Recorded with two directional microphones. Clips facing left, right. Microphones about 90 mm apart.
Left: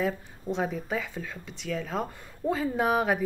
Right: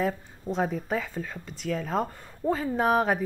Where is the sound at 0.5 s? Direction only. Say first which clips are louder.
Right 2 dB; 40° right (ahead or behind).